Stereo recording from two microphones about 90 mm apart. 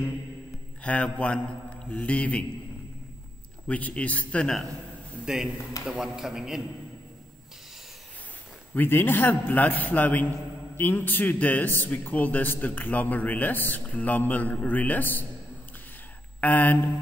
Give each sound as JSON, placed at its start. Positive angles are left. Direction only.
{"t": 0.8, "sound": "a man's voice", "side_deg": 15}
{"t": 3.6, "sound": "a man's voice", "side_deg": 15}
{"t": 5.2, "sound": "a man's voice", "side_deg": -5}
{"t": 8.7, "sound": "speech", "side_deg": 25}
{"t": 16.3, "sound": "a sound", "side_deg": 20}